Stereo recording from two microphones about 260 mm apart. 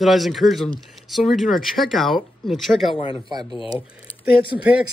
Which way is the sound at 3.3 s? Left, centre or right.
Centre.